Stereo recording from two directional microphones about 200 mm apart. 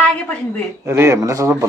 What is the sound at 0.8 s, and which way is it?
Speech, 15° right (ahead or behind).